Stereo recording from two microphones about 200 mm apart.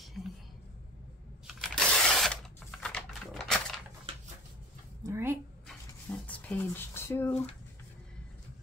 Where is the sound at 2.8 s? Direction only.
Centre (ahead or behind).